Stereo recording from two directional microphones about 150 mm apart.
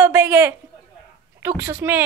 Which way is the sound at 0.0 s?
20° right (ahead or behind).